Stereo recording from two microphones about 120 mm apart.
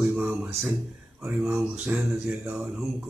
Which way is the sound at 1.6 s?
5° right (ahead or behind).